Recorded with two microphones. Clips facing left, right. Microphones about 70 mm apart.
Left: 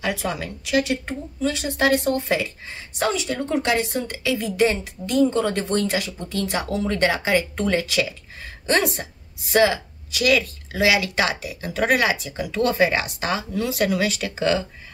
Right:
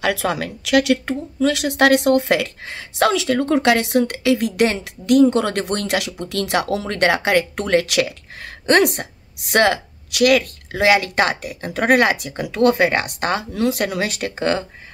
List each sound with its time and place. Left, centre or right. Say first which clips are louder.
0.0 s speech: right 5 dB; right
6.9 s speech: right 3 dB; right